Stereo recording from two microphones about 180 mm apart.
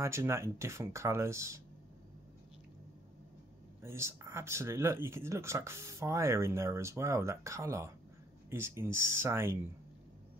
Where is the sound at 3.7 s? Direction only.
15° right (ahead or behind).